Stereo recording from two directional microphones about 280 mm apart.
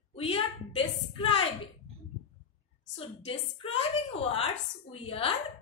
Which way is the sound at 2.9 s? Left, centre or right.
Centre.